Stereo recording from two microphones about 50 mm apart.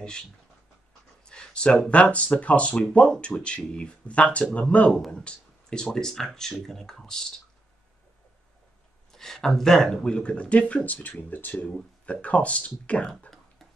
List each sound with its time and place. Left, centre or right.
1.3 s a sound: left
1.9 s speech: left
5.2 s a sound: centre
5.9 s speech: centre
9.1 s speech: centre
10.9 s speech: left
11.6 s speech: left